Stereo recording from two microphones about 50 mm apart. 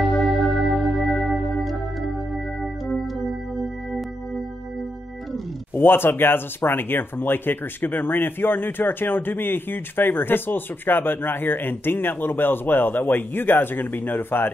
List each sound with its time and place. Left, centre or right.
0.2 s organ: centre
5.8 s speech: left